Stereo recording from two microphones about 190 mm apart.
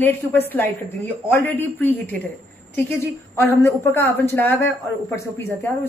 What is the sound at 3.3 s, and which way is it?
A woman's voice, 15° left (ahead or behind).